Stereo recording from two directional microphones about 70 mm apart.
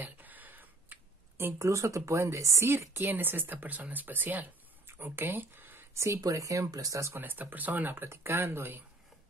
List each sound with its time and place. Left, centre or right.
0.0 s a sound: right
1.6 s speech: right
5.9 s speech: right
7.2 s speech: right